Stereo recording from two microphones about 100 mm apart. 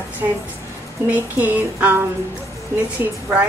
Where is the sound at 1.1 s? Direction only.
20° right (ahead or behind).